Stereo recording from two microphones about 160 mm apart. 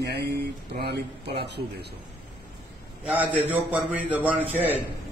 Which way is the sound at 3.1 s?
10° right (ahead or behind).